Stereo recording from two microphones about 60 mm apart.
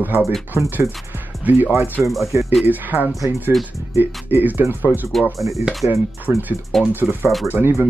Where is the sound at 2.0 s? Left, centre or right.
Centre.